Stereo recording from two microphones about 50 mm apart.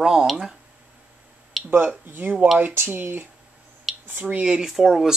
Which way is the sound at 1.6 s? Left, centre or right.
Centre.